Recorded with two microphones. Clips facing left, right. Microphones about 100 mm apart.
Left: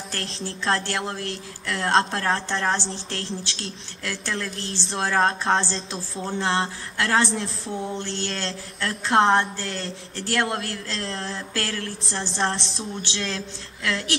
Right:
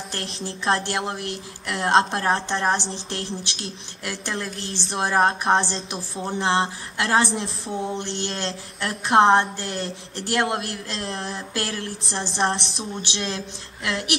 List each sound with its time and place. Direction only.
0.4 s speech: 20° right (ahead or behind)